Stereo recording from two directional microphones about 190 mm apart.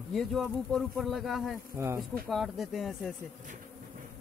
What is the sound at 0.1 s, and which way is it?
Speech, centre (ahead or behind).